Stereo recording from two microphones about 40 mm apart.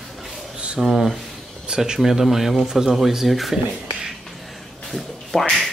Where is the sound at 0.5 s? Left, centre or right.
Right.